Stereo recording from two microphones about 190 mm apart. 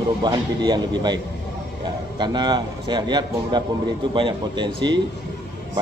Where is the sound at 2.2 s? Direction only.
20° right (ahead or behind).